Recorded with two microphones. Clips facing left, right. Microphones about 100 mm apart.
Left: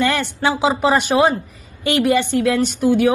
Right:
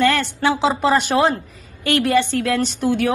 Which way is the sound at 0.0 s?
15° left (ahead or behind).